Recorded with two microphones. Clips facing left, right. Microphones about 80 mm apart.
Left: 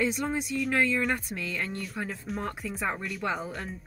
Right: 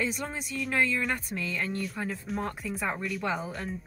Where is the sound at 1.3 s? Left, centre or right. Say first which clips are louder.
Right 1 dB; left.